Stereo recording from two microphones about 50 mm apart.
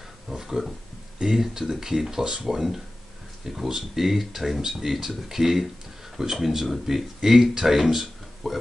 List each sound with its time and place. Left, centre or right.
0.4 s speech: centre